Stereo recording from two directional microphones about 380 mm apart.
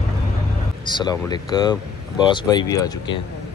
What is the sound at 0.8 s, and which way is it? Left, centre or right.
Speech, centre.